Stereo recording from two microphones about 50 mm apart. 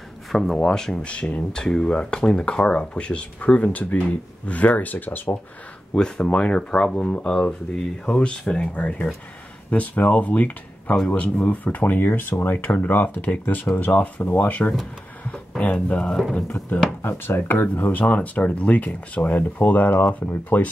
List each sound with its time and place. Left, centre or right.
0.3 s speech: centre
0.6 s speech: centre; by 5.4 s left
5.9 s speech: centre
8.7 s speech: left
16.4 s speech: left